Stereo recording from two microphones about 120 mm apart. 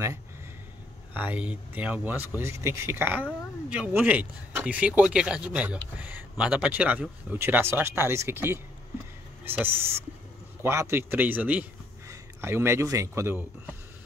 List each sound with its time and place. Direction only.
1.1 s speech: 15° right (ahead or behind)